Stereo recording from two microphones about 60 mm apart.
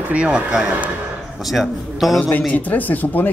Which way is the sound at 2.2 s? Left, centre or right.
Left.